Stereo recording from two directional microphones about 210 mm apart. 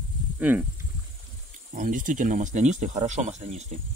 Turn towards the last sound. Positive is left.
turn(degrees=-35)  # may be behind; listen again after turning